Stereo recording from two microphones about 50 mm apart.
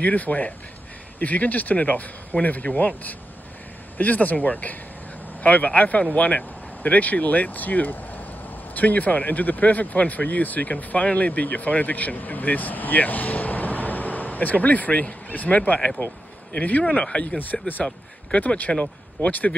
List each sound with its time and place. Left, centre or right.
0.0 s speech: left
4.0 s speech: left
17.0 s speech: centre
17.4 s speech: left
17.8 s speech: left